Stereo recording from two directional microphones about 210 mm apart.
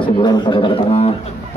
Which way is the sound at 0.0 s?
20° left (ahead or behind).